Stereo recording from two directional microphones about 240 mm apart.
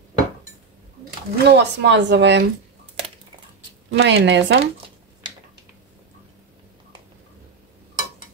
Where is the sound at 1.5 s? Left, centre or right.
Right.